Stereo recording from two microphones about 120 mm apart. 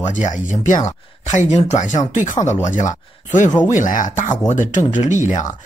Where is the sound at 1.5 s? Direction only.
70° left (ahead or behind).